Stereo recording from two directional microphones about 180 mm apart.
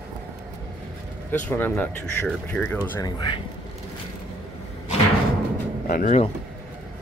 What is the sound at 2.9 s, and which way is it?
Speech, 20° left (ahead or behind).